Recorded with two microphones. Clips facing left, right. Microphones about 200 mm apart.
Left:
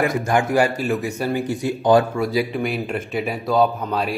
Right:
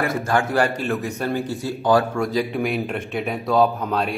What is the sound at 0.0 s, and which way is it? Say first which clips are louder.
Speech: left 2 dB; 15° left (ahead or behind).